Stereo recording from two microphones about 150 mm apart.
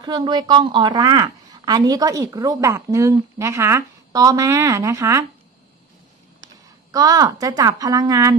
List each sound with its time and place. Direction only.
0.0 s a woman's voice: 30° right (ahead or behind)
6.9 s a woman's voice: 25° right (ahead or behind)